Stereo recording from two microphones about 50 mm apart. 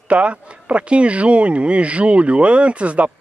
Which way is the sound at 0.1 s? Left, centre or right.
Right.